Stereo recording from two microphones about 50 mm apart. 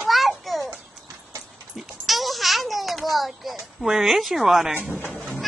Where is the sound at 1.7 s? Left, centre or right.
Centre.